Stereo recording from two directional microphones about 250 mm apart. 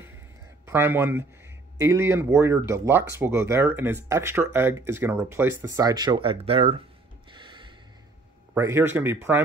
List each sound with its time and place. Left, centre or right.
0.7 s speech: centre
7.2 s gasp: centre
8.5 s speech: centre